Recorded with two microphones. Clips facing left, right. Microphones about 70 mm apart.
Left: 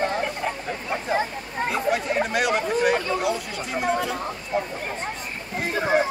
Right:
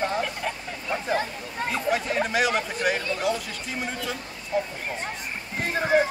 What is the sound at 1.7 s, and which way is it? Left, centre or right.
Chatter, centre.